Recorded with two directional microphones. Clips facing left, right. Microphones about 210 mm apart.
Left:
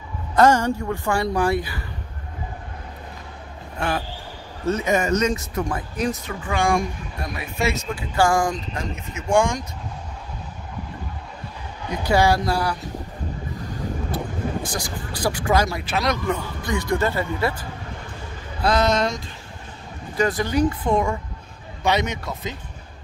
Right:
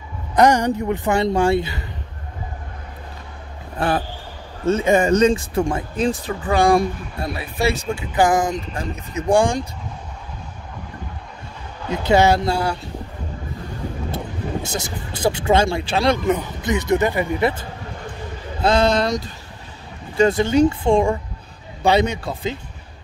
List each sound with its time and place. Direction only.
0.4 s a man's voice: 15° right (ahead or behind)
3.7 s speech: 35° right (ahead or behind)
8.1 s a man's voice: 20° right (ahead or behind)
8.9 s speech: 35° right (ahead or behind)
11.9 s a man's voice: 25° right (ahead or behind)
14.1 s a man's voice: 25° right (ahead or behind)